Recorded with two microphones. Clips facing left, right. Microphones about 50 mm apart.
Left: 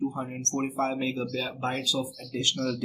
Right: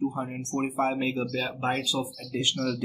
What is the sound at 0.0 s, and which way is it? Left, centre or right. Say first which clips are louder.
Speech: right 1 dB; centre.